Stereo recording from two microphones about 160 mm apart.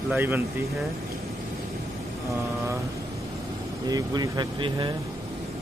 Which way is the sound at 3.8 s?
25° right (ahead or behind).